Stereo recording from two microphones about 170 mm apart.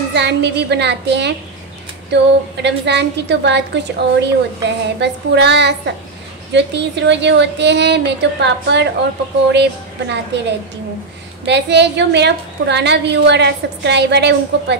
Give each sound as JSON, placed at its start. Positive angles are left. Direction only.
{"t": 0.1, "sound": "a woman's voice", "side_deg": -90}
{"t": 11.4, "sound": "a woman's voice", "side_deg": -90}